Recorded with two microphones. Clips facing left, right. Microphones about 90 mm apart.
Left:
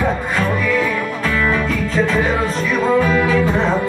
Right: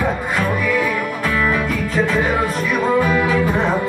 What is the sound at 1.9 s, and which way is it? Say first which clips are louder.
Music: even; 15° right (ahead or behind).